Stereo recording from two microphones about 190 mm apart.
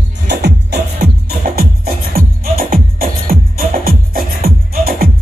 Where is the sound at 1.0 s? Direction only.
55° right (ahead or behind).